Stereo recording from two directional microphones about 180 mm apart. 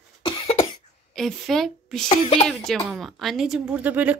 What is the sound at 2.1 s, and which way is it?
Speech, 35° left (ahead or behind).